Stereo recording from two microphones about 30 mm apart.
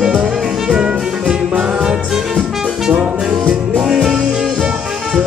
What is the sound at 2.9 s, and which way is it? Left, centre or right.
Music, right.